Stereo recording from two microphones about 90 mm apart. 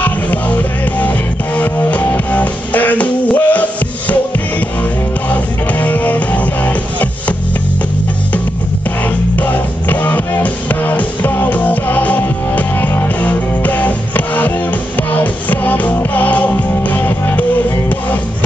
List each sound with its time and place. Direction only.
0.0 s music: 20° left (ahead or behind)
5.3 s music: 20° left (ahead or behind)
9.4 s music: 20° left (ahead or behind)